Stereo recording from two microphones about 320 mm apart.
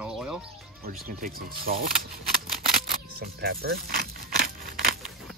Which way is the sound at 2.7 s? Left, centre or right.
Right.